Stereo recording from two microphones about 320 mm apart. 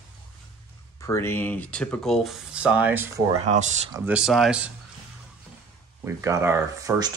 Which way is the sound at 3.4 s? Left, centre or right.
Right.